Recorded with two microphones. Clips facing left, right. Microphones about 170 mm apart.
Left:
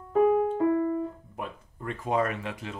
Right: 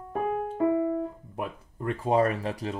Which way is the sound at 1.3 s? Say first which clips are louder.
Right 3 dB; 30° right (ahead or behind).